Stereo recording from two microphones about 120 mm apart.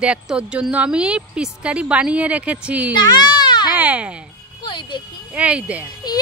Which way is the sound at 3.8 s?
10° right (ahead or behind).